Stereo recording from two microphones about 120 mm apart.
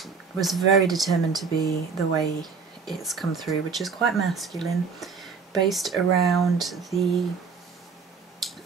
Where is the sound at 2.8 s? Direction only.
Centre (ahead or behind).